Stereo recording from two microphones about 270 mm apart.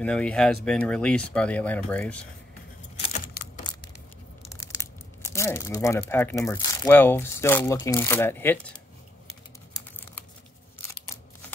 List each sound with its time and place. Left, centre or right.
0.0 s speech: centre
3.4 s a sound: left
4.5 s speech: centre